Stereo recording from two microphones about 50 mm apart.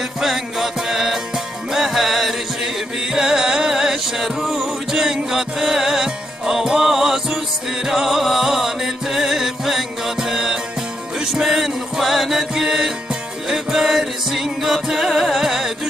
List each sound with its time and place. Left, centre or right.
0.2 s music: centre